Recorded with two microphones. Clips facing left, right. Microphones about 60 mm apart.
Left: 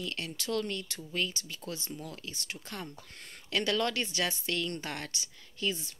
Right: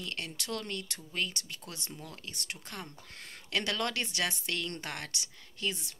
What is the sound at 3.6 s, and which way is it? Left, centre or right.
Speech, right.